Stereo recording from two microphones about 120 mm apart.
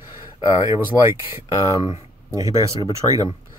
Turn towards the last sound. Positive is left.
turn(degrees=-30)  # may be behind; listen again after turning